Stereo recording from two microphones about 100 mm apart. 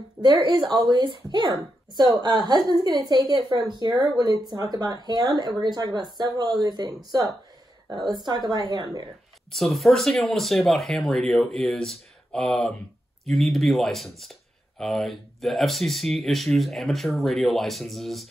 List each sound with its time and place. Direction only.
0.2 s a woman's voice: 50° right (ahead or behind)
9.5 s speech: centre (ahead or behind)